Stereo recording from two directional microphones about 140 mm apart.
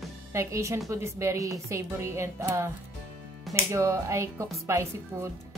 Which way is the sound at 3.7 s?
20° right (ahead or behind).